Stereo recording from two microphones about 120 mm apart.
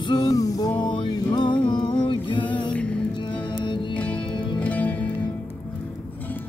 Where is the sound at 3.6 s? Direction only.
40° left (ahead or behind).